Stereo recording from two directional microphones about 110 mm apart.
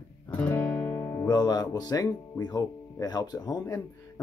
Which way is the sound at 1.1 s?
35° left (ahead or behind).